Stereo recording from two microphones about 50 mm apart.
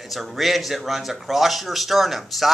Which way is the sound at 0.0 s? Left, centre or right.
Centre.